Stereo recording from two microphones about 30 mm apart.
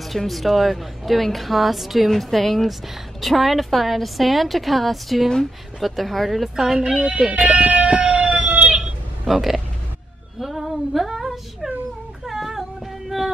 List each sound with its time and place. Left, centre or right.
0.3 s a woman's voice: centre
2.0 s a woman's voice: centre
6.5 s speech: centre
6.8 s speech: right
7.4 s a sound: right
9.3 s a woman's voice: centre
10.4 s female singing: centre
12.3 s a sound: centre